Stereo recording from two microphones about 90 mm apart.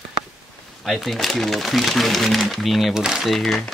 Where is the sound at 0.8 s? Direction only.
Centre (ahead or behind).